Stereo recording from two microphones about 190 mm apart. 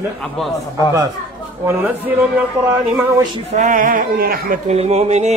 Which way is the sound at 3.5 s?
45° right (ahead or behind).